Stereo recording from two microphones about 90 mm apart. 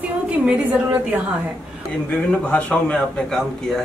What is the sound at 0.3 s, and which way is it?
Speech, 15° right (ahead or behind).